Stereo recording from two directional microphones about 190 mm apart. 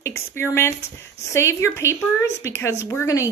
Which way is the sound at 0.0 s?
10° left (ahead or behind).